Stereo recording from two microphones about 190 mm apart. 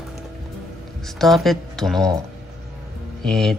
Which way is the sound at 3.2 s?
Centre (ahead or behind).